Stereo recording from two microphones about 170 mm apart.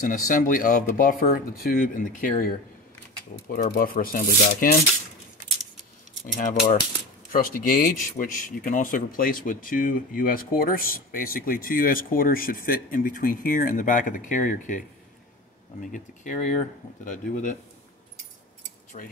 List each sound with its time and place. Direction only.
0.0 s speech: 55° left (ahead or behind)
6.2 s speech: 50° left (ahead or behind)
18.9 s speech: 45° left (ahead or behind)